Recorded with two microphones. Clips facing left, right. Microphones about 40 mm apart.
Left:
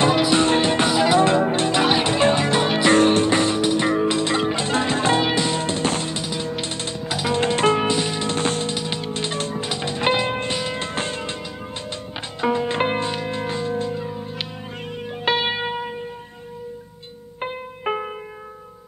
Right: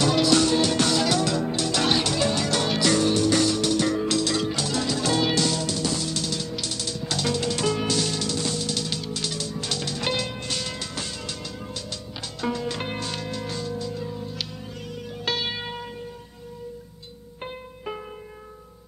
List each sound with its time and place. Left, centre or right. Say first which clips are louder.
0.0 s music: left 3 dB; left
1.8 s music: left 4 dB; left
2.9 s music: left 6 dB; left
5.6 s music: left 4 dB; left
6.1 s music: left 3 dB; left
7.1 s music: left 3 dB; centre
7.3 s music: left 11 dB; left
8.4 s music: left 5 dB; left
8.7 s music: left 4 dB; left
10.9 s music: left 7 dB; left
17.9 s music: left 9 dB; left